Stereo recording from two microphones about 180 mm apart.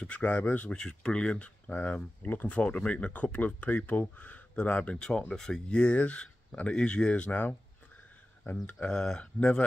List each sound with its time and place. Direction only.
0.0 s speech: 10° left (ahead or behind)